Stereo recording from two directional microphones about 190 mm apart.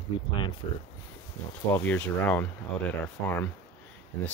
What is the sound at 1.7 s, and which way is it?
Speech, 10° left (ahead or behind).